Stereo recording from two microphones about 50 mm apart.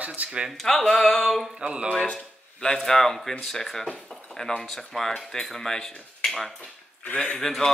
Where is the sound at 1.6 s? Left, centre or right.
Right.